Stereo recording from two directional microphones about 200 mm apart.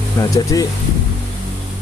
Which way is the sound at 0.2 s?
15° left (ahead or behind).